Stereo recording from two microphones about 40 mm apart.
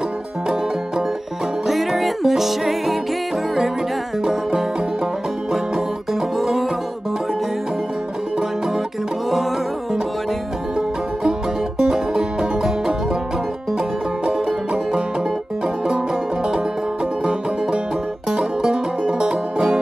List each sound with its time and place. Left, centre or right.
1.7 s music: centre
6.3 s music: centre
11.8 s music: centre
14.2 s music: right
18.3 s music: centre